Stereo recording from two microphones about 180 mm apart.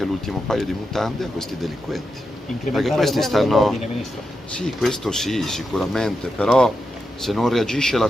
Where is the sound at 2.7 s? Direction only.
Centre (ahead or behind).